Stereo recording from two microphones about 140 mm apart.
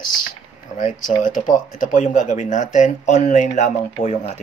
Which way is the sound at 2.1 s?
60° left (ahead or behind).